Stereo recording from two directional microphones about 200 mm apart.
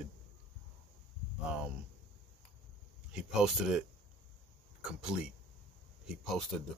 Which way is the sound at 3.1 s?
Centre (ahead or behind).